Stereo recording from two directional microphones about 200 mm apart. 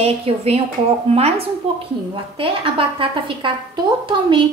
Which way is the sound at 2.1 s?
25° right (ahead or behind).